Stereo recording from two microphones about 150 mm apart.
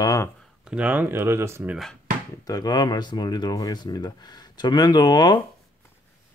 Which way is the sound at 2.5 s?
25° left (ahead or behind).